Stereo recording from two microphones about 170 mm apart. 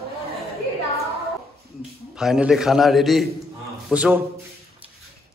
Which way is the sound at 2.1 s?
5° right (ahead or behind).